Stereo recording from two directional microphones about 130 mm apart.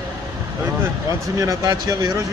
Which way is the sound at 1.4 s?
25° right (ahead or behind).